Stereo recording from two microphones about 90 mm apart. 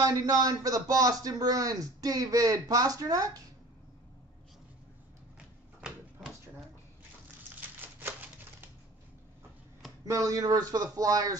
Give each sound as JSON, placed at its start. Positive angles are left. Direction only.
{"t": 0.0, "sound": "speech", "side_deg": -45}
{"t": 7.8, "sound": "a sound", "side_deg": -25}
{"t": 10.0, "sound": "speech", "side_deg": -35}